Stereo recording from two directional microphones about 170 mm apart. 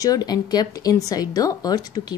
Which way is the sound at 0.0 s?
20° left (ahead or behind).